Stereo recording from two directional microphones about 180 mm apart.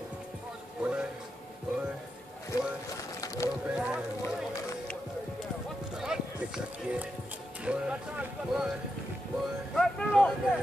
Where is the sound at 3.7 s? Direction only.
5° right (ahead or behind).